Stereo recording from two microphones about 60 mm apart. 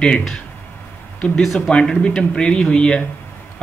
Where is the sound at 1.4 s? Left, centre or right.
Centre.